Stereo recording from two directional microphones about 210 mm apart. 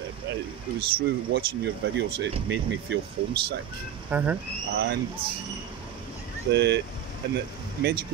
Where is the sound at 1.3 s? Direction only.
55° right (ahead or behind).